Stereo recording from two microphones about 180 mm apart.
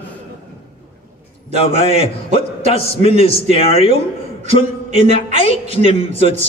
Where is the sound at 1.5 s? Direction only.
35° left (ahead or behind).